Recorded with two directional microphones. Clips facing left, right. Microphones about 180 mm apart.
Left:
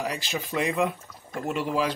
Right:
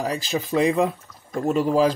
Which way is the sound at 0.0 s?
35° right (ahead or behind).